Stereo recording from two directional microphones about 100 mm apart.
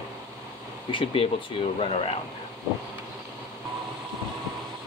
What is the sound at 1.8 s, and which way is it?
Speech, 80° left.